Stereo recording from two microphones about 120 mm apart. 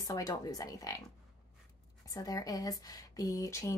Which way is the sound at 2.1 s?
30° left (ahead or behind).